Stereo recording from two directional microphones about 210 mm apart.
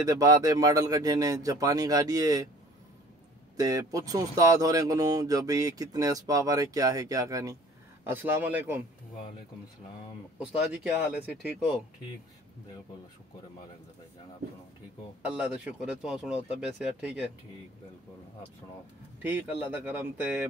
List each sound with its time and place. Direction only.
0.0 s speech: 15° right (ahead or behind)
3.5 s speech: 15° right (ahead or behind)
10.4 s speech: 5° right (ahead or behind)
15.2 s speech: 5° right (ahead or behind)
19.2 s speech: 10° right (ahead or behind)